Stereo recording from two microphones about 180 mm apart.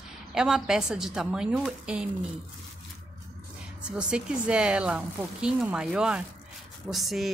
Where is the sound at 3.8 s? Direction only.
5° right (ahead or behind).